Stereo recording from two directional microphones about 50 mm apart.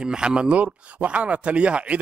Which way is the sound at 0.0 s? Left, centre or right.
Centre.